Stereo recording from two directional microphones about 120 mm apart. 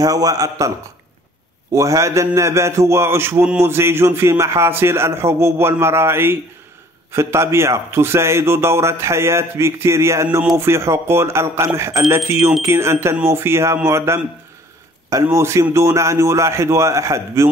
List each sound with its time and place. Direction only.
0.0 s a man's voice: 30° right (ahead or behind)
15.3 s a man's voice: 25° right (ahead or behind)